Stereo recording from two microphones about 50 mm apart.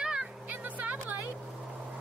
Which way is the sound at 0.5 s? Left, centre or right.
Right.